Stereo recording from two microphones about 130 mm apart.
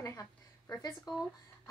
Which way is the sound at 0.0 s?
25° left (ahead or behind).